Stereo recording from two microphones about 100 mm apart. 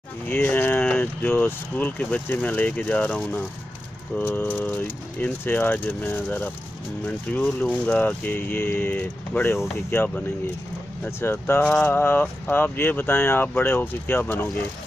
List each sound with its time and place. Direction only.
0.3 s speech: 15° left (ahead or behind)